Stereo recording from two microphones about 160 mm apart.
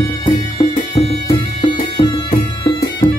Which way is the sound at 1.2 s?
35° left (ahead or behind).